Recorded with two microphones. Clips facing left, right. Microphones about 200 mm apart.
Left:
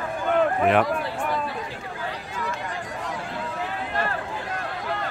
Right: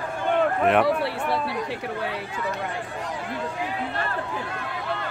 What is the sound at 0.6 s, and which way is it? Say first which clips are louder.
Speech: right 2 dB; centre (ahead or behind).